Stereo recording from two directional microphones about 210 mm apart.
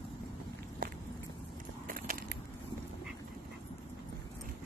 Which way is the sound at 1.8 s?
45° right (ahead or behind).